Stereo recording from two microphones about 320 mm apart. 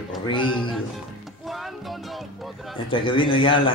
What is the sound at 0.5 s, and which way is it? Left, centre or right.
Speech, centre.